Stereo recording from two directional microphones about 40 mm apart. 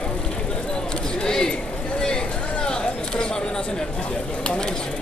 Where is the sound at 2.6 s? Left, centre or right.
Left.